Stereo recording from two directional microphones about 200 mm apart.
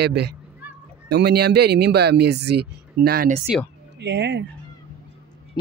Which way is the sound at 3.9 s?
60° right (ahead or behind).